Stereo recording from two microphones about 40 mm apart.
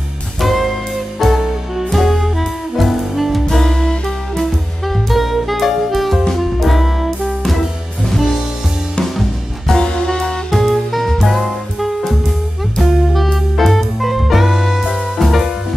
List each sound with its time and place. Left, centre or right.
0.4 s music: centre
3.4 s music: centre
9.8 s music: centre
10.5 s music: centre